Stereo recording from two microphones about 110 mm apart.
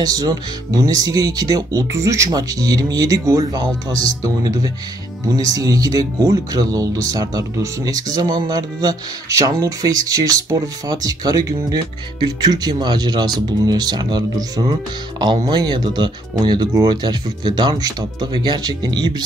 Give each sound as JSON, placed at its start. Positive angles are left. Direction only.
{"t": 0.0, "sound": "speech", "side_deg": -35}